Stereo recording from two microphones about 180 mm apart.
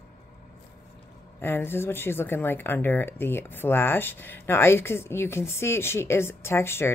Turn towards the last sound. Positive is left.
turn(degrees=15)  # may be behind; listen again after turning